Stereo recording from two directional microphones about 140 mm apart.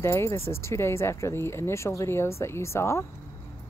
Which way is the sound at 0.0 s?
20° left (ahead or behind).